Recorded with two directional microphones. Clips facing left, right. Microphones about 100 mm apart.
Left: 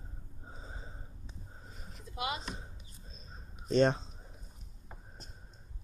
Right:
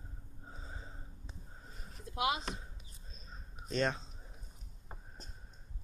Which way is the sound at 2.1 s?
90° right.